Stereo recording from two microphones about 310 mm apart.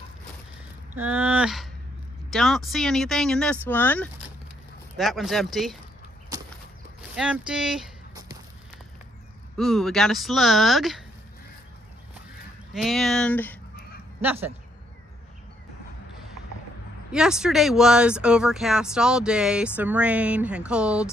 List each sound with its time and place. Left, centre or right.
0.9 s speech: centre
6.3 s a sound: centre
7.0 s speech: centre
9.6 s speech: centre
12.7 s speech: centre
14.2 s speech: centre
17.1 s speech: centre